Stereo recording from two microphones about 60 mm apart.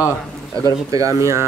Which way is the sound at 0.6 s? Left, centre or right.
Right.